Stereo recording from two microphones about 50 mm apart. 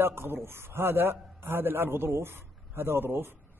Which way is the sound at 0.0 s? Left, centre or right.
Right.